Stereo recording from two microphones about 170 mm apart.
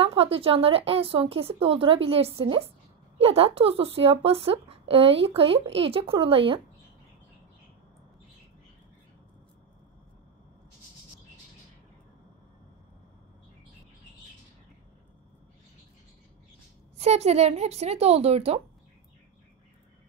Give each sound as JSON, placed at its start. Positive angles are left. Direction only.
{"t": 0.0, "sound": "speech", "side_deg": -35}
{"t": 17.0, "sound": "speech", "side_deg": -40}